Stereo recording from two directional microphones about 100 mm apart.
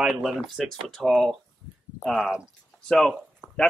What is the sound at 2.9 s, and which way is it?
Speech, 5° left (ahead or behind).